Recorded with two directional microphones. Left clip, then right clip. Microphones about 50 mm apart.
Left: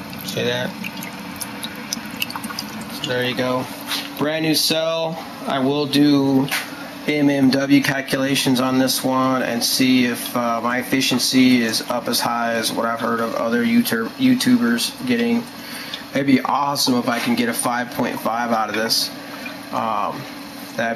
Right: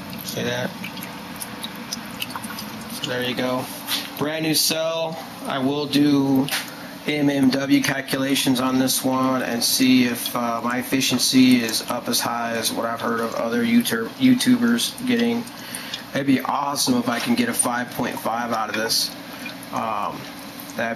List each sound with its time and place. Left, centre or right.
0.4 s speech: centre
3.0 s speech: centre
6.0 s speech: right
17.7 s speech: centre
19.8 s speech: centre